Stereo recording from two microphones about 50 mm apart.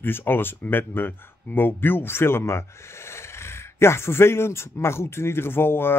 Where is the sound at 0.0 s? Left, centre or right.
Left.